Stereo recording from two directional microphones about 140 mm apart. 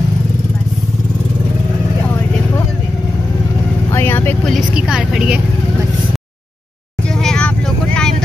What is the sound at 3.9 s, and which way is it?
Vehicle, 15° left (ahead or behind).